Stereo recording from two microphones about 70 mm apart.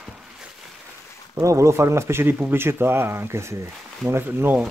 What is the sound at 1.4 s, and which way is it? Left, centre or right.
Speech, right.